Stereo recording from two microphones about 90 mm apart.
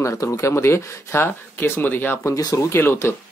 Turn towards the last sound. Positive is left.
turn(degrees=25)  # may be behind; listen again after turning